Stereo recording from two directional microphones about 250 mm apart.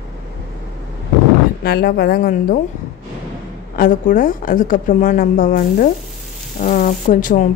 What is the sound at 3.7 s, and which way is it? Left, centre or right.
A woman's voice, left.